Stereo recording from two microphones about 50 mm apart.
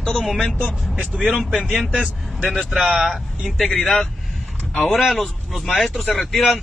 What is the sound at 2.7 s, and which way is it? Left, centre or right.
Speech, right.